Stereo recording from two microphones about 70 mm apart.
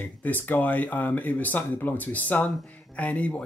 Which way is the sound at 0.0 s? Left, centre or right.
Left.